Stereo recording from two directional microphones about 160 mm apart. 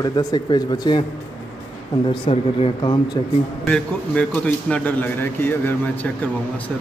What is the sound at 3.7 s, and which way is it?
A man's voice, 5° left (ahead or behind).